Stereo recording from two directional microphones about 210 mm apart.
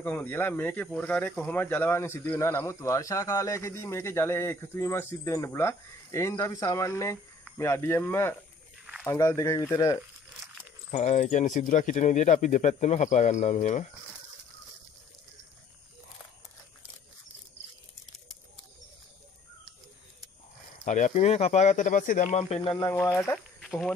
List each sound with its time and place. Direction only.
0.0 s speech: 10° left (ahead or behind)
10.9 s speech: 35° left (ahead or behind)
20.8 s speech: 35° left (ahead or behind); by 23.3 s 15° left (ahead or behind)